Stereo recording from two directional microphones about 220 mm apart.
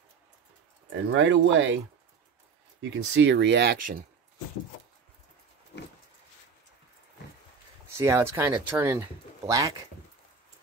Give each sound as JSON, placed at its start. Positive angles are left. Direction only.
{"t": 0.8, "sound": "speech", "side_deg": -60}
{"t": 2.8, "sound": "speech", "side_deg": -60}
{"t": 8.0, "sound": "speech", "side_deg": -10}